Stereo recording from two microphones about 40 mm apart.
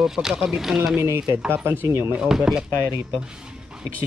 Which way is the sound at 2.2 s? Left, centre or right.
Centre.